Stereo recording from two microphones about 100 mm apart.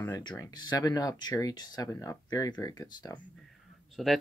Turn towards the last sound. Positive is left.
turn(degrees=0)  # may be behind; listen again after turning